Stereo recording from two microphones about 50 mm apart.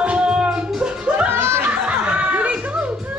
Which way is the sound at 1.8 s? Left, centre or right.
Right.